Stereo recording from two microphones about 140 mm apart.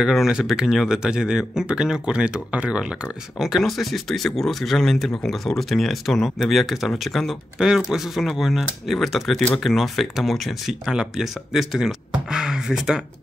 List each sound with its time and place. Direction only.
0.0 s speech: 5° right (ahead or behind)